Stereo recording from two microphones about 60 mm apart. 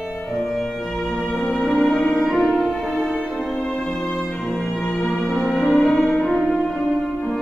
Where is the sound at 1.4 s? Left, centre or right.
Centre.